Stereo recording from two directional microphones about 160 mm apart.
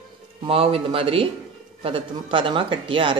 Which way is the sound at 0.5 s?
35° right (ahead or behind).